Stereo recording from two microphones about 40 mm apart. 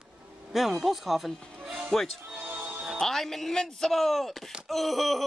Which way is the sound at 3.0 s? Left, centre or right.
Centre.